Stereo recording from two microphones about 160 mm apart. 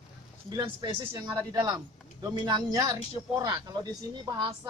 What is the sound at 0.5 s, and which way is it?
Speech, 30° right (ahead or behind).